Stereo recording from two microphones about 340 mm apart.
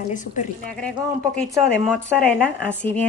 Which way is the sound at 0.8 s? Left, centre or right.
Centre.